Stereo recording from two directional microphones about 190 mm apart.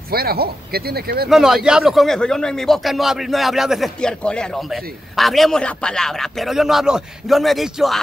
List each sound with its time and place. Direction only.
0.1 s speech: 55° right (ahead or behind)
1.3 s a man's voice: 5° right (ahead or behind)